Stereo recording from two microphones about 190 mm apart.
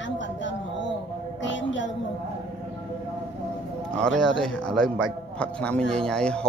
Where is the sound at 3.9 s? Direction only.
5° left (ahead or behind).